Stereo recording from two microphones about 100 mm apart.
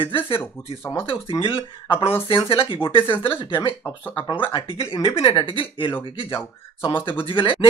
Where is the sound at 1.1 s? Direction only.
60° left (ahead or behind).